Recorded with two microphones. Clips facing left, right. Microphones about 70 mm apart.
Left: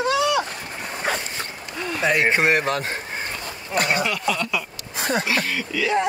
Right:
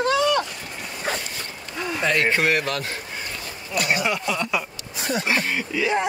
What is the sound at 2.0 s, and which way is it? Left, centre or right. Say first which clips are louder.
Speech: left 2 dB; centre.